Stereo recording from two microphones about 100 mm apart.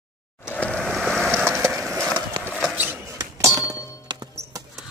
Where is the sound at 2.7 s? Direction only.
15° right (ahead or behind).